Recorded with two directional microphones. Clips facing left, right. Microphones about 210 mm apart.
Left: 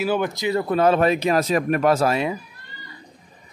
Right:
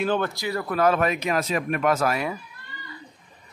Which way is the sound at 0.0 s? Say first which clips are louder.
Left 2 dB; 10° left (ahead or behind).